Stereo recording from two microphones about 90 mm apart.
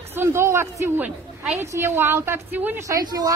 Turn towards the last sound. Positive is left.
turn(degrees=-45)  # may be behind; listen again after turning